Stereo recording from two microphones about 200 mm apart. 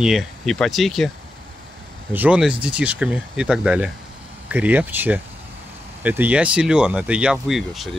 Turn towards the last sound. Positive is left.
turn(degrees=0)  # may be behind; listen again after turning